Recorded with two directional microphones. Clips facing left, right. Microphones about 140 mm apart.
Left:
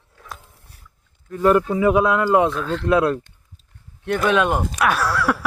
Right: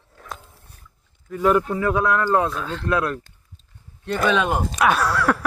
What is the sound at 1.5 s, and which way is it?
Speech, 5° left (ahead or behind).